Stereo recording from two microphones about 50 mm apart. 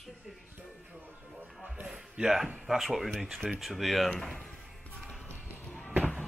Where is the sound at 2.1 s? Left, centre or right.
Centre.